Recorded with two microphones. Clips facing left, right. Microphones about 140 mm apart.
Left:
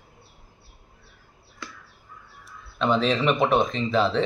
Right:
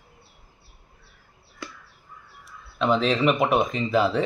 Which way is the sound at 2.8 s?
Centre (ahead or behind).